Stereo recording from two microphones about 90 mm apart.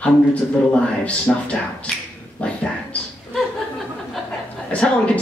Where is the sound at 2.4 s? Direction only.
10° left (ahead or behind).